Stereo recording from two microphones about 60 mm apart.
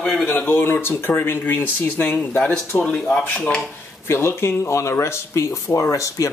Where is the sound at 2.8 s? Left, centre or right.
Centre.